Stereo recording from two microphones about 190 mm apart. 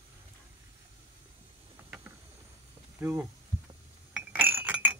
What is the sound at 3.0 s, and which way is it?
Speech, 15° right (ahead or behind).